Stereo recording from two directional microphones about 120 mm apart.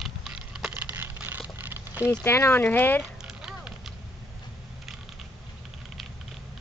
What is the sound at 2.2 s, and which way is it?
Speech, 20° left (ahead or behind).